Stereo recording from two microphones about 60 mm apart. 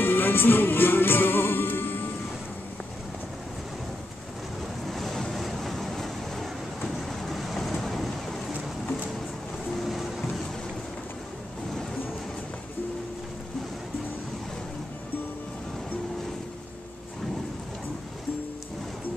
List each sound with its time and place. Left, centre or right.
0.0 s music: left
4.8 s waves: centre
7.0 s vehicle: centre
9.8 s train: centre